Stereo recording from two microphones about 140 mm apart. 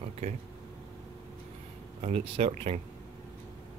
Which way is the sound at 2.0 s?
45° right (ahead or behind).